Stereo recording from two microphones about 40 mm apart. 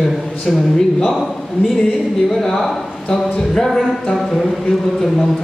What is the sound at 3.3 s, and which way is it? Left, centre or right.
Music, centre.